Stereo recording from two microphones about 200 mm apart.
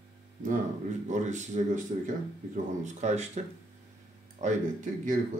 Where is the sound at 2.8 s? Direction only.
35° right (ahead or behind).